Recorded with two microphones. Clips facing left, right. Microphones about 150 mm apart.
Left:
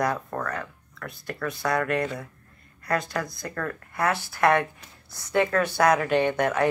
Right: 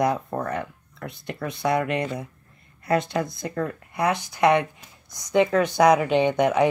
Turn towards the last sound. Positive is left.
turn(degrees=-15)  # may be behind; listen again after turning